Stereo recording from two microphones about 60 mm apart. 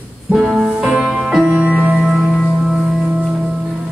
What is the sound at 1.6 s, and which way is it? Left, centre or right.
Music, right.